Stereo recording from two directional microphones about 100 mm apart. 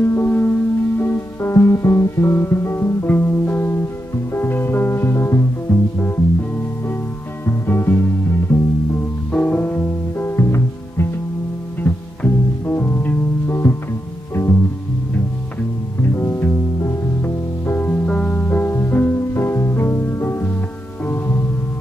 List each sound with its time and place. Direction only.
0.0 s music: 20° left (ahead or behind)
7.4 s music: 20° left (ahead or behind)
16.0 s music: 25° left (ahead or behind)